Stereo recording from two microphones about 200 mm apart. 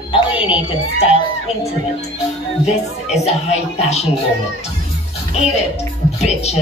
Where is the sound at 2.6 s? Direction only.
35° left (ahead or behind).